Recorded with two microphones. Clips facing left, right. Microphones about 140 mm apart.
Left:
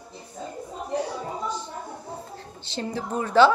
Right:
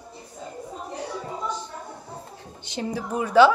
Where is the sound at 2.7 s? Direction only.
15° right (ahead or behind).